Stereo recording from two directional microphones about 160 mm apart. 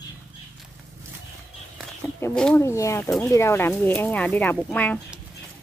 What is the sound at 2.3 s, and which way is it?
Speech, 5° left (ahead or behind).